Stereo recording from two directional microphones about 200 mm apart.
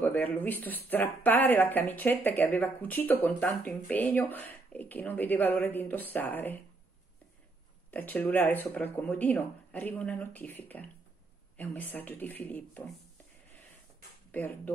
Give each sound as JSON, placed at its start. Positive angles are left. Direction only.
{"t": 0.0, "sound": "speech", "side_deg": 10}
{"t": 7.9, "sound": "speech", "side_deg": 10}
{"t": 14.3, "sound": "speech", "side_deg": 10}